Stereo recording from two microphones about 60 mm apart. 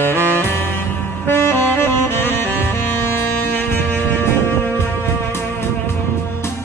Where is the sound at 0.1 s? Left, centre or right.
Right.